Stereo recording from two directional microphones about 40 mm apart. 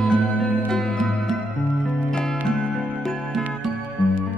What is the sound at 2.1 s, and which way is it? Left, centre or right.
Music, centre.